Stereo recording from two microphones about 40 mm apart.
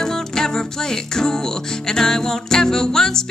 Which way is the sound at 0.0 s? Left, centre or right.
Centre.